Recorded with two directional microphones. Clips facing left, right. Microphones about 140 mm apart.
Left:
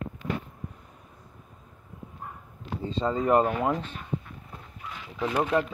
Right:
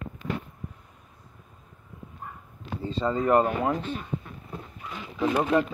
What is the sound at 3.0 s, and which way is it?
Speech, 10° left (ahead or behind).